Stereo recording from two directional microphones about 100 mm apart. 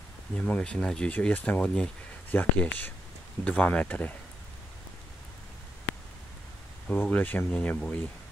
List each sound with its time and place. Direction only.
0.4 s speech: 10° left (ahead or behind)
6.9 s speech: 15° left (ahead or behind)